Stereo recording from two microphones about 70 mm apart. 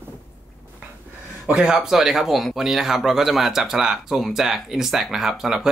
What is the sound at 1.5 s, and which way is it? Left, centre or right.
Speech, centre.